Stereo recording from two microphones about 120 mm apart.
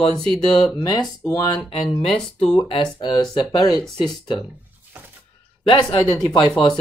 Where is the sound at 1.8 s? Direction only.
5° left (ahead or behind).